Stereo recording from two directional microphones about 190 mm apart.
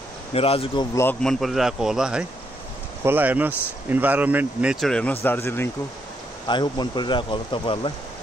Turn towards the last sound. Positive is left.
turn(degrees=25)  # may be behind; listen again after turning